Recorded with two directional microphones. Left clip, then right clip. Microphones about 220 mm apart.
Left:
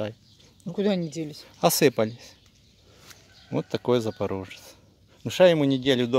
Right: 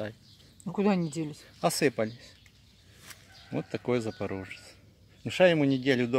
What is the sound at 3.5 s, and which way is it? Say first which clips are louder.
Speech: left 6 dB; 35° left (ahead or behind).